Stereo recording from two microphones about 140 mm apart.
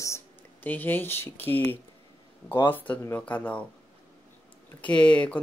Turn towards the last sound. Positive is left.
turn(degrees=10)  # may be behind; listen again after turning